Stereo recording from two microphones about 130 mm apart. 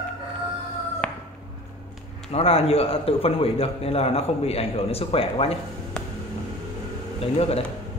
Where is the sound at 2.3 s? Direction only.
50° left (ahead or behind).